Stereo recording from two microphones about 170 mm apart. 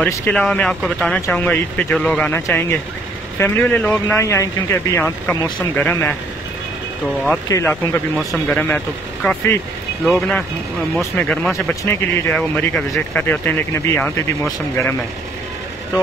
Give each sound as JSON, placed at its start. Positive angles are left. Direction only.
{"t": 0.0, "sound": "speech", "side_deg": 10}
{"t": 7.4, "sound": "speech", "side_deg": 20}
{"t": 8.5, "sound": "speech", "side_deg": 10}